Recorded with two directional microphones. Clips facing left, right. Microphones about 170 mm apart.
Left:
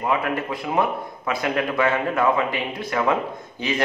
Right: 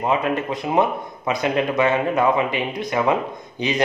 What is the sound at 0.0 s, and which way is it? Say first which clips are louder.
Speech: right 2 dB; 20° right (ahead or behind).